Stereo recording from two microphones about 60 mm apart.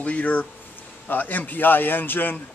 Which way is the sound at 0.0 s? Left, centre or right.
Left.